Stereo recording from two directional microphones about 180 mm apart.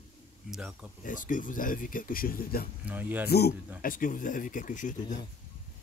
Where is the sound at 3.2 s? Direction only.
60° left (ahead or behind).